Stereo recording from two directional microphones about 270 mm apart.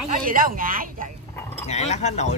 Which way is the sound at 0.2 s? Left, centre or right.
Right.